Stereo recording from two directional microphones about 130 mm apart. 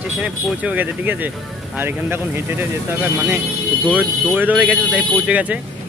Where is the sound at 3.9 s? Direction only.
15° right (ahead or behind).